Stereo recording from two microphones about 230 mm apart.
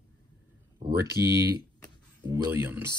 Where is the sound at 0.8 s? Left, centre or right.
Right.